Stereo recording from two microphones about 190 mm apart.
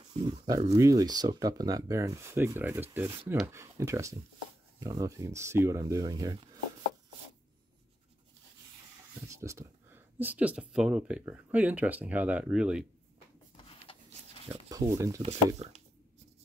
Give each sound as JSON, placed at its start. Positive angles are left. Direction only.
{"t": 0.1, "sound": "speech", "side_deg": -30}
{"t": 9.3, "sound": "speech", "side_deg": -15}
{"t": 13.7, "sound": "a sound", "side_deg": 30}
{"t": 14.7, "sound": "speech", "side_deg": -15}
{"t": 15.2, "sound": "speech", "side_deg": -35}